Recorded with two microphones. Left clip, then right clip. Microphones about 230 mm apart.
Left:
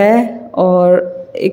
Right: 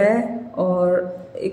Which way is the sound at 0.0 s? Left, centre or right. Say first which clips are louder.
Left 7 dB; left.